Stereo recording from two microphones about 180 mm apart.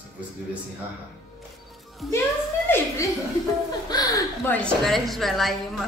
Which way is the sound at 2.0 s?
Centre (ahead or behind).